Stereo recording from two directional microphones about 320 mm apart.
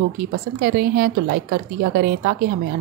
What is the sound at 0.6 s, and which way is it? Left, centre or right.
A woman's voice, right.